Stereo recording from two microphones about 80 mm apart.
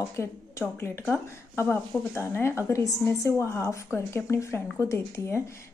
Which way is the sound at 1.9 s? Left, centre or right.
Left.